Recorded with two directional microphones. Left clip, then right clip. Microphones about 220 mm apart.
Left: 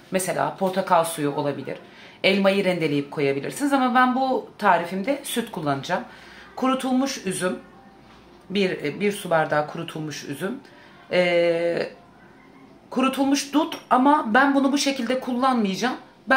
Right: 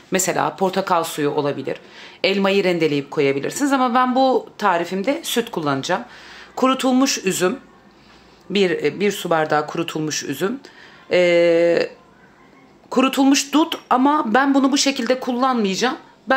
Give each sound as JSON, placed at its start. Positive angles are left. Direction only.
{"t": 0.1, "sound": "speech", "side_deg": -50}
{"t": 8.5, "sound": "speech", "side_deg": -40}
{"t": 12.9, "sound": "speech", "side_deg": -40}